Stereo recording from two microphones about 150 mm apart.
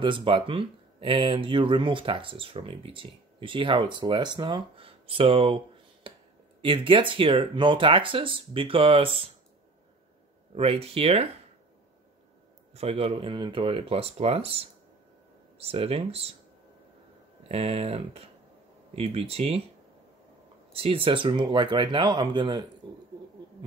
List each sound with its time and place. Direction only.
0.0 s speech: 35° right (ahead or behind)
6.0 s a sound: 35° right (ahead or behind)
6.6 s speech: 35° right (ahead or behind)
10.5 s speech: 40° right (ahead or behind)
12.7 s speech: 40° right (ahead or behind)
17.4 s speech: 40° right (ahead or behind)
20.7 s speech: 40° right (ahead or behind)